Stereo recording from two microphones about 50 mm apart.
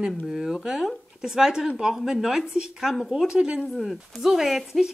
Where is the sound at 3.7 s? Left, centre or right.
Centre.